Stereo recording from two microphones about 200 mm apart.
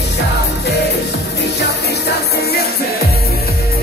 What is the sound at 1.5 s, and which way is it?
Music, 55° left (ahead or behind).